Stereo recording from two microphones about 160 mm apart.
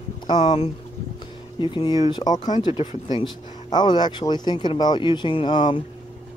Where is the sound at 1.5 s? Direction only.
30° left (ahead or behind).